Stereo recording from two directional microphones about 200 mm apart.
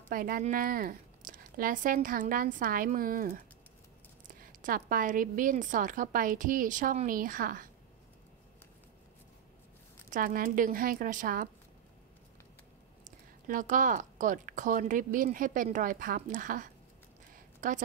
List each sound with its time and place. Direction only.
0.1 s a woman's voice: 45° right (ahead or behind)
10.0 s a woman's voice: 40° right (ahead or behind)
13.0 s a woman's voice: 40° right (ahead or behind)